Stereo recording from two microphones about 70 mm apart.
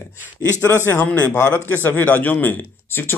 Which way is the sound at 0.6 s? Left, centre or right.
Left.